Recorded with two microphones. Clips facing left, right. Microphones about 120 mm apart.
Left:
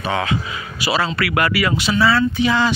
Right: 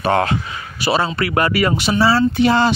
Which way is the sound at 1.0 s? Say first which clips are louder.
Right 1 dB; 30° right (ahead or behind).